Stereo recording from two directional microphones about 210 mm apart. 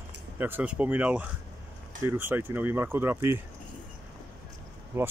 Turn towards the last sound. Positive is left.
turn(degrees=-10)  # may be behind; listen again after turning